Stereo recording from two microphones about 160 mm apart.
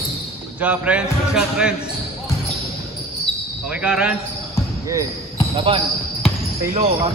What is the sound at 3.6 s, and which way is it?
Speech, 10° right (ahead or behind).